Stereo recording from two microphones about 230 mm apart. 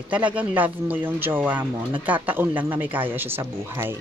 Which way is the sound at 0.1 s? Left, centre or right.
Centre.